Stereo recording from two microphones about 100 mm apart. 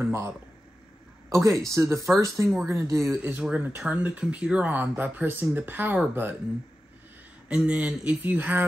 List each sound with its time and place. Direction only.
0.0 s speech: 25° right (ahead or behind)
1.3 s speech: 30° right (ahead or behind)
3.2 s speech: 20° right (ahead or behind)
7.4 s speech: 10° right (ahead or behind)